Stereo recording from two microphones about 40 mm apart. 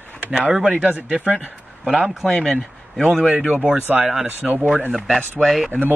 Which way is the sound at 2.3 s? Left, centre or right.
Centre.